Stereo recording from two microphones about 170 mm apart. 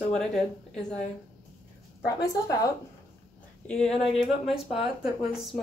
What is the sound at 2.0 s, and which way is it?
Speech, 20° left (ahead or behind).